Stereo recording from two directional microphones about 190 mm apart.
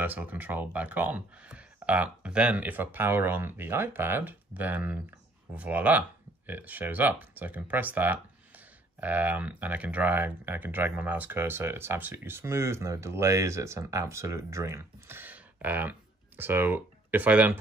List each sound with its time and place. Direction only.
0.0 s speech: 10° right (ahead or behind)